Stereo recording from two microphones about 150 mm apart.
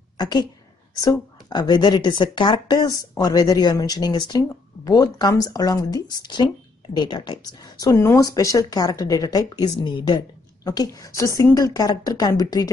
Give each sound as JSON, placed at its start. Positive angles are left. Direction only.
{"t": 0.2, "sound": "a woman's voice", "side_deg": 30}